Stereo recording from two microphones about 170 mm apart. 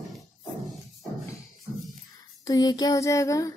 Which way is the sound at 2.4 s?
25° left (ahead or behind).